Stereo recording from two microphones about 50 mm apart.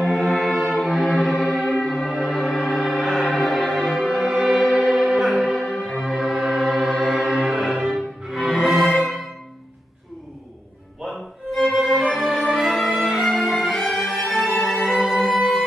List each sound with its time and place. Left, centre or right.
0.0 s music: centre
1.6 s music: centre
4.2 s music: centre
11.1 s music: centre
11.6 s violin: centre
12.4 s music: centre